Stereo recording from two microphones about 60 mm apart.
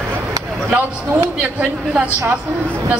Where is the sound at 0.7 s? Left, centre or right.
Right.